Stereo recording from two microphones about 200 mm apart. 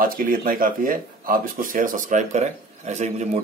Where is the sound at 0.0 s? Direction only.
45° right (ahead or behind).